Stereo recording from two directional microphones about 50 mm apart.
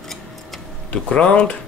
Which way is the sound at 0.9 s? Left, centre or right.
Left.